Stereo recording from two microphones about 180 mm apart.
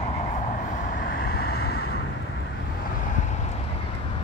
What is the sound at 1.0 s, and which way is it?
Vehicle, 60° left (ahead or behind).